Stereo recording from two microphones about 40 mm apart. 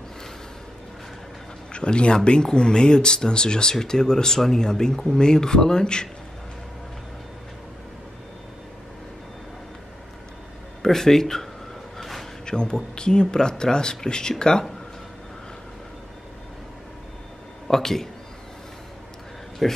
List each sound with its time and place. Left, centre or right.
1.7 s speech: left
10.8 s speech: centre
12.0 s a sound: centre
12.4 s speech: left
17.6 s speech: centre
19.6 s speech: centre